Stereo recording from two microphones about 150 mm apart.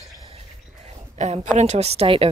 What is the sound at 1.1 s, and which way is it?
A woman's voice, 50° right (ahead or behind).